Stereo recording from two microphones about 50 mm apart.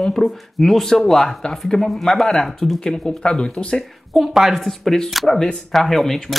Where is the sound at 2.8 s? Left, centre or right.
Centre.